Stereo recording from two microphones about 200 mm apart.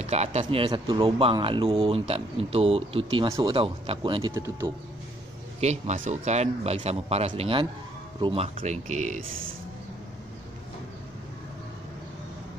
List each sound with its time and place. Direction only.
0.0 s speech: 30° right (ahead or behind)
4.3 s speech: 15° right (ahead or behind)
5.6 s speech: 35° right (ahead or behind)
8.5 s speech: 35° right (ahead or behind)